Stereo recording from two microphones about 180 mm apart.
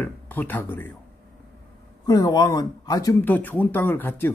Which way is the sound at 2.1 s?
20° left (ahead or behind).